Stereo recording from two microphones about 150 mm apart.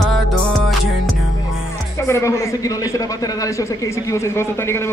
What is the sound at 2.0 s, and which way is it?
Speech, 20° left (ahead or behind).